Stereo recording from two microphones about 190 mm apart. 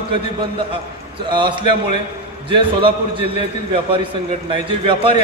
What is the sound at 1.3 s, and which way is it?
A man's voice, 25° right (ahead or behind).